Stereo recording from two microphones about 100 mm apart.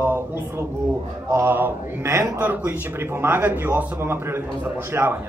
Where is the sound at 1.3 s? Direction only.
20° right (ahead or behind).